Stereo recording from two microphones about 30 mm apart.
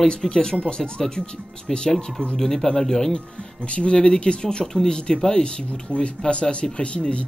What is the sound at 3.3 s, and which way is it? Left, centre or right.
Speech, left.